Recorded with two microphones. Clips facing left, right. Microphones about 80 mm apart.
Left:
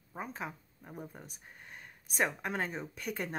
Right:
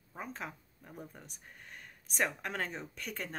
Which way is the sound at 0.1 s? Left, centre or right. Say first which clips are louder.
Left 2 dB; centre.